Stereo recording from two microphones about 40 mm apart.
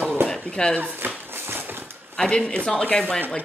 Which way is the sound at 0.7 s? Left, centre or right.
Right.